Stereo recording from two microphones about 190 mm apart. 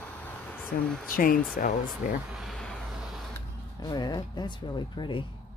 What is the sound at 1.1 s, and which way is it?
Speech, 45° left (ahead or behind).